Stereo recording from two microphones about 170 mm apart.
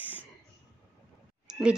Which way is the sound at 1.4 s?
5° right (ahead or behind).